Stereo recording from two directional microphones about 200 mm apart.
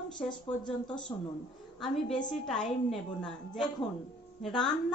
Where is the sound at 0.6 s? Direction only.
25° left (ahead or behind).